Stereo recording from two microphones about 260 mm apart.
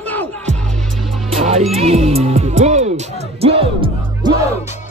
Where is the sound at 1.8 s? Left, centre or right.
Right.